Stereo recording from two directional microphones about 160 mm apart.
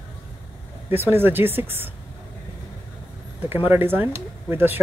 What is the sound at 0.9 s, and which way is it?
Speech, 15° right (ahead or behind).